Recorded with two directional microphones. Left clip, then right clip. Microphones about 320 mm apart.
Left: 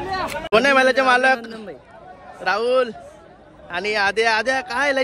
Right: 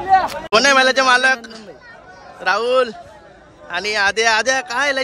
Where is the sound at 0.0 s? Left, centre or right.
Right.